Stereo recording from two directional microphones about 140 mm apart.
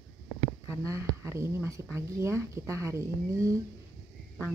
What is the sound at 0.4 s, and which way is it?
Speech, 20° right (ahead or behind).